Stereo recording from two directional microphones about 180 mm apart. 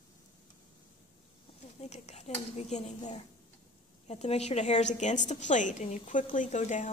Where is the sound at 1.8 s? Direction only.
35° left (ahead or behind).